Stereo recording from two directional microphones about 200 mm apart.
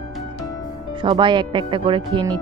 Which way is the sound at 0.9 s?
25° right (ahead or behind).